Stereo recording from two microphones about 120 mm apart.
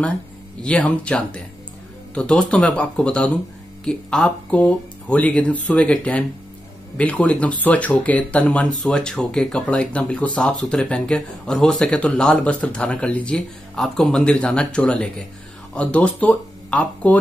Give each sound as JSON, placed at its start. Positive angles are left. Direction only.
{"t": 0.6, "sound": "speech", "side_deg": 10}